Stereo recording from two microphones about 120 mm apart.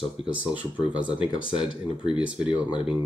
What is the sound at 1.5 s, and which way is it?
Speech, 45° left (ahead or behind).